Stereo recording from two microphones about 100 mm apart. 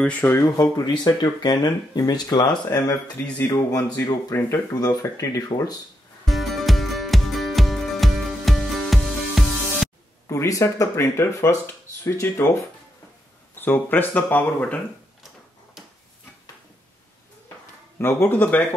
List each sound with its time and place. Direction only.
0.0 s speech: 15° left (ahead or behind)
0.4 s speech: 35° left (ahead or behind)
6.2 s music: centre (ahead or behind)
10.2 s speech: 35° left (ahead or behind)
13.6 s speech: 20° left (ahead or behind)
17.9 s speech: 20° left (ahead or behind)